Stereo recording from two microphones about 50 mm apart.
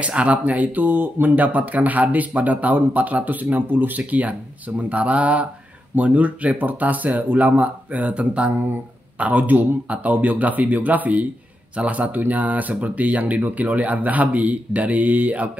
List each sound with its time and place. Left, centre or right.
0.0 s a man's voice: right